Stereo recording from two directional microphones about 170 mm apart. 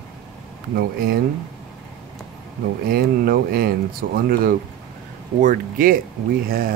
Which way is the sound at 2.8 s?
60° right (ahead or behind).